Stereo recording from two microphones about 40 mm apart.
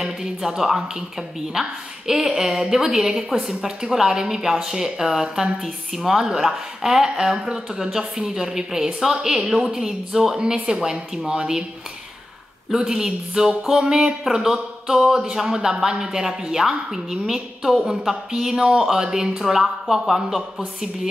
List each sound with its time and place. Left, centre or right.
0.0 s speech: centre
12.7 s speech: centre